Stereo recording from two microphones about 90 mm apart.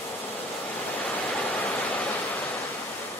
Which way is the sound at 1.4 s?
15° left (ahead or behind).